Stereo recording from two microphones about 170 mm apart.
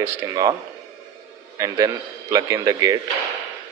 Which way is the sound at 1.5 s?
20° right (ahead or behind).